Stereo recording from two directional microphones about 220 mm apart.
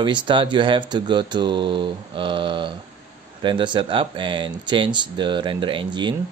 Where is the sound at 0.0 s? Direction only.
20° right (ahead or behind).